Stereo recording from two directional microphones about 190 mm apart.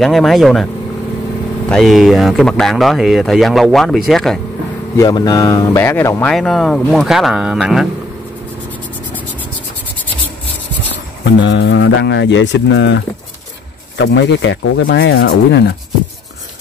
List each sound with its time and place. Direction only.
0.0 s speech: centre (ahead or behind)
1.7 s speech: centre (ahead or behind)
4.9 s a man's voice: 20° left (ahead or behind)
6.3 s speech: centre (ahead or behind)
11.4 s speech: 70° left (ahead or behind)